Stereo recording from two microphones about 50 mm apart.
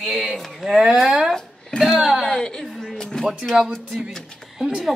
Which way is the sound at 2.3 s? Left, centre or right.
Centre.